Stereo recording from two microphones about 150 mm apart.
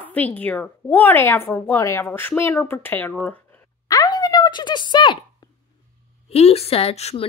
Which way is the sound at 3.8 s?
25° left (ahead or behind).